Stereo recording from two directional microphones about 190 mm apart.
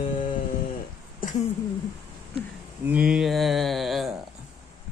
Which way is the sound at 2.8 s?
5° right (ahead or behind).